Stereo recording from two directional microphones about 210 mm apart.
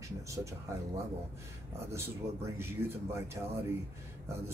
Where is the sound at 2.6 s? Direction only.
10° right (ahead or behind).